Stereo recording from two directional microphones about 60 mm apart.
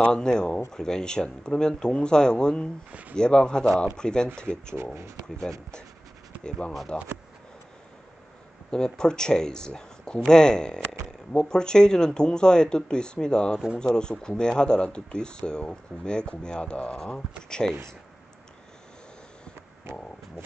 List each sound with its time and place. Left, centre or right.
0.1 s speech: centre
2.9 s speech: right
3.2 s speech: centre
6.9 s speech: centre
8.6 s speech: centre